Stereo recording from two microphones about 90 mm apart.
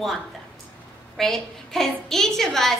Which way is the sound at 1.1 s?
5° left (ahead or behind).